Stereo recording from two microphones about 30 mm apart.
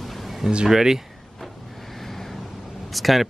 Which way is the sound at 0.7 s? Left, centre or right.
Centre.